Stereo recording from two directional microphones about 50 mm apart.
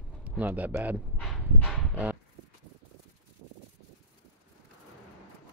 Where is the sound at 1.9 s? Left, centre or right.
Right.